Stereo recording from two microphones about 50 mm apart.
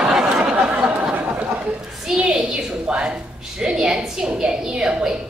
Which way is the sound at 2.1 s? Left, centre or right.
Centre.